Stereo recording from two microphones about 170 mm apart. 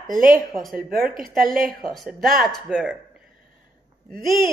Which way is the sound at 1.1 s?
55° right (ahead or behind).